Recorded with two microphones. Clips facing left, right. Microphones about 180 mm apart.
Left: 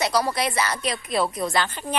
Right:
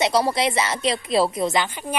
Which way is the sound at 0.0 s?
25° right (ahead or behind).